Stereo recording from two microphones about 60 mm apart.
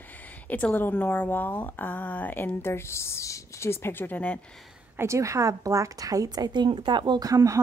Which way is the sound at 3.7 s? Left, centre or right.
Left.